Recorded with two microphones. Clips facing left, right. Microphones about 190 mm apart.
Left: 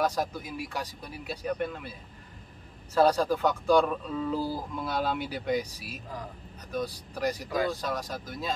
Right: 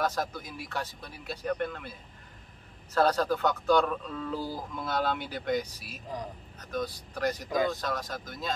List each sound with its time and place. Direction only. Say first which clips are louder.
0.0 s speech: left 2 dB; 10° left (ahead or behind)
7.4 s speech: right 2 dB; 20° right (ahead or behind)
7.7 s speech: left 1 dB; 10° left (ahead or behind)